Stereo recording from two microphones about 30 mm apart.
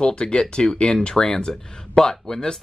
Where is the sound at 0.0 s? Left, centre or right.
Left.